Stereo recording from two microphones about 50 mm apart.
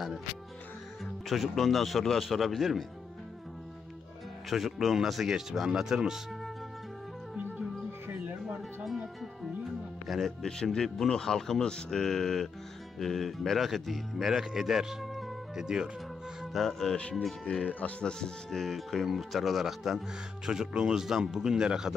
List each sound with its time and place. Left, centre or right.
1.3 s speech: centre
4.5 s speech: centre
8.1 s music: right
10.0 s speech: centre
10.4 s speech: centre
16.5 s speech: centre
17.5 s speech: left
18.0 s speech: centre
20.4 s speech: centre